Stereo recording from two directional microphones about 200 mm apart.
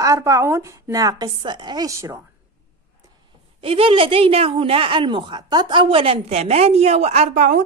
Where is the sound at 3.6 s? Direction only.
30° right (ahead or behind).